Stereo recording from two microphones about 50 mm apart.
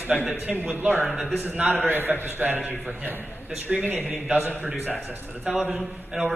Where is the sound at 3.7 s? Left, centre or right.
Centre.